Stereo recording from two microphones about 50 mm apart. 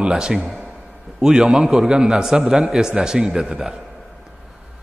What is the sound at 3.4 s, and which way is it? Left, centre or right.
Speech, right.